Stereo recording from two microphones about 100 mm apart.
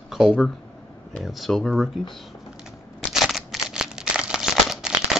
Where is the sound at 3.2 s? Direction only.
Centre (ahead or behind).